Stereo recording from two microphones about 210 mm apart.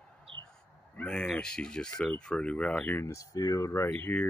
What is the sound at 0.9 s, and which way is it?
Speech, 5° left (ahead or behind).